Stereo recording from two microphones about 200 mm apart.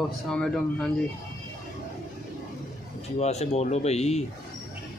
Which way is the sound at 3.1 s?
35° left (ahead or behind).